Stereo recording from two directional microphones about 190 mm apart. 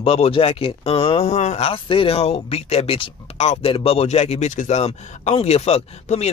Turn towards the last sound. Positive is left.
turn(degrees=35)  # may be behind; listen again after turning